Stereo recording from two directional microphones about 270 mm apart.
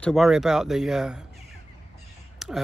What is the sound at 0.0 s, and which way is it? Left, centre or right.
Speech, centre.